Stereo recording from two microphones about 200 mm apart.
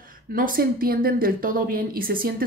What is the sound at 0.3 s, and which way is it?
A woman's voice, 45° right (ahead or behind).